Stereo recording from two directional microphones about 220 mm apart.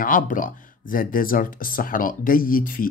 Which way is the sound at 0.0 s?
40° left (ahead or behind).